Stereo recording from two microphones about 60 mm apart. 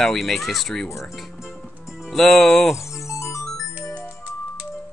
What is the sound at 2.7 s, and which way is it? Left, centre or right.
Music, left.